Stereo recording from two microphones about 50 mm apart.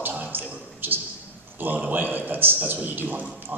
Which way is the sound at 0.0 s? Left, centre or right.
Right.